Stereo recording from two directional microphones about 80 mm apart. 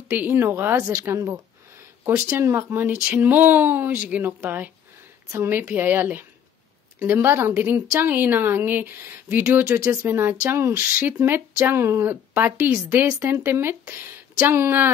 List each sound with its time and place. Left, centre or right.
0.1 s a woman's voice: right
5.6 s speech: right
9.8 s speech: right